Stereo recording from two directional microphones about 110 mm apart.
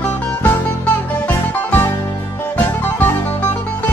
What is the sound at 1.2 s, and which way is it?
Music, 20° left (ahead or behind).